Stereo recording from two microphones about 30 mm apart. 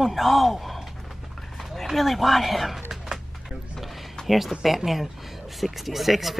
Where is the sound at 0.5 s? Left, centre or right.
Centre.